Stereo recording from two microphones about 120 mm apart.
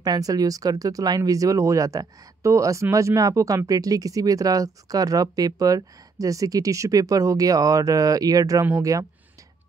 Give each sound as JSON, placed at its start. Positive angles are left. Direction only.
{"t": 0.0, "sound": "speech", "side_deg": -30}